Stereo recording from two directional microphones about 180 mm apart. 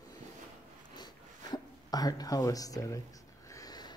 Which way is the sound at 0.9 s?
25° left (ahead or behind).